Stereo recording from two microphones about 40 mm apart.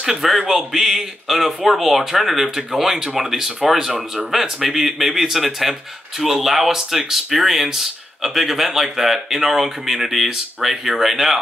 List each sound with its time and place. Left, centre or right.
0.0 s speech: centre